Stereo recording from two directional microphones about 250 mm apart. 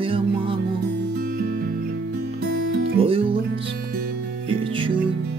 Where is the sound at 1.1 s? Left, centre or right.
Right.